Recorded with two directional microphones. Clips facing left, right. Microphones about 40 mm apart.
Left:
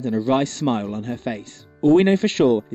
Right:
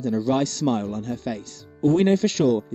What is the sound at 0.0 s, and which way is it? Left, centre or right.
Speech, left.